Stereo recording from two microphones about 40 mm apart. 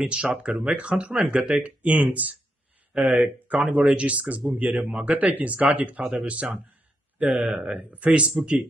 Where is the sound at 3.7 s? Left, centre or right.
Right.